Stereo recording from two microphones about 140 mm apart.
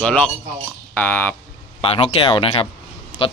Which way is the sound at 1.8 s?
40° left (ahead or behind).